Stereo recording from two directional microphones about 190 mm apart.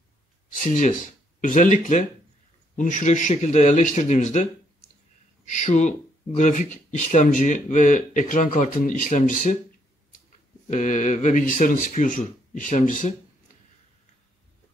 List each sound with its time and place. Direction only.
0.6 s speech: 45° left (ahead or behind)
10.7 s speech: 40° left (ahead or behind)